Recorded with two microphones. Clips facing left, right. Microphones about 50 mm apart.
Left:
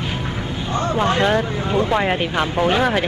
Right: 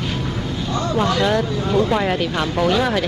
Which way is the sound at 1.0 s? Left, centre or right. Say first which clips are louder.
Even; left.